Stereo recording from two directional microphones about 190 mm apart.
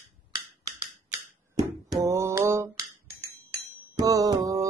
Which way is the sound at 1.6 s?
15° right (ahead or behind).